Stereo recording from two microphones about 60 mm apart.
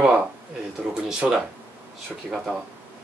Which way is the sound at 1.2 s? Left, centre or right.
Centre.